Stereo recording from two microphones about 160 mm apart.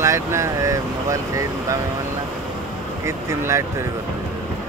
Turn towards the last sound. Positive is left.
turn(degrees=-20)  # may be behind; listen again after turning